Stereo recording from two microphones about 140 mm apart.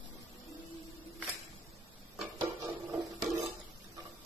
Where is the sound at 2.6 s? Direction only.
20° right (ahead or behind).